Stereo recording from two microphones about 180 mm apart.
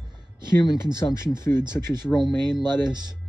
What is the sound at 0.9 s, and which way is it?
Speech, 15° left (ahead or behind).